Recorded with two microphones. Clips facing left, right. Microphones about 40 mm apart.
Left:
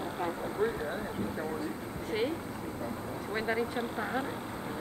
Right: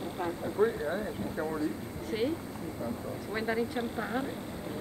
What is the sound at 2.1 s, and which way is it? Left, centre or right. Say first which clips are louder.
Speech: even; left.